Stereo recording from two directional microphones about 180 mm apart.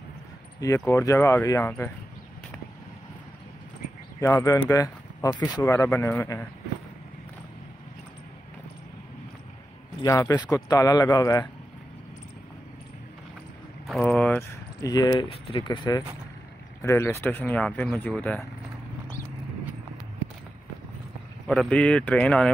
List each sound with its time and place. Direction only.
0.6 s speech: 15° left (ahead or behind)
4.2 s speech: 15° left (ahead or behind)
10.0 s a man's voice: 20° left (ahead or behind)
14.0 s vehicle: 10° left (ahead or behind)
14.8 s a man's voice: 20° left (ahead or behind); by 18.4 s 5° left (ahead or behind)
21.5 s speech: 5° left (ahead or behind)